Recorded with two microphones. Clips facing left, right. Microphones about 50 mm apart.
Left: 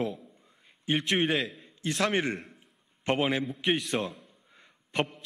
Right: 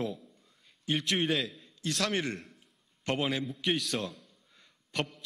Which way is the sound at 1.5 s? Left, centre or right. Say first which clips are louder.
Left 2 dB; left.